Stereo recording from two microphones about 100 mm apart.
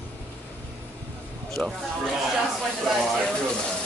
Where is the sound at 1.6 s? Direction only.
5° left (ahead or behind).